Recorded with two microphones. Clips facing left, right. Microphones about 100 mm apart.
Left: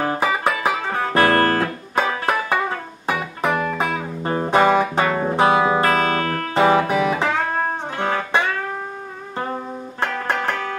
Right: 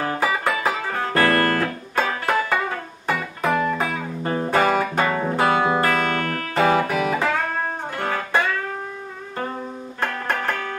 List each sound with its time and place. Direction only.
0.0 s music: 20° left (ahead or behind)
9.9 s music: 20° left (ahead or behind)